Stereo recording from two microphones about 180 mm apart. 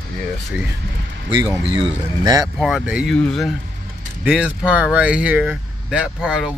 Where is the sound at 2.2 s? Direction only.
20° right (ahead or behind).